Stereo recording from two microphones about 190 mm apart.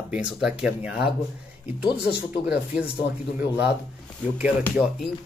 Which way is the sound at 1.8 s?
5° right (ahead or behind).